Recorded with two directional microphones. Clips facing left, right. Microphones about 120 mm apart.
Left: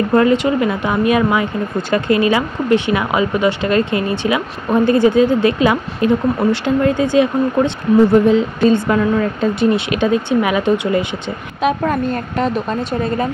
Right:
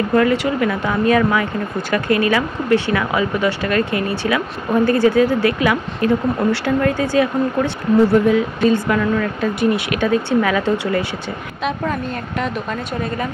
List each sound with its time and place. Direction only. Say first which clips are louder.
0.1 s speech: left 3 dB; 25° left (ahead or behind)
11.6 s speech: left 6 dB; 45° left (ahead or behind)